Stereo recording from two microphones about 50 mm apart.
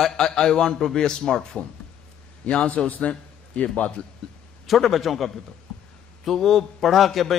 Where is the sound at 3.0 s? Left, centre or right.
Left.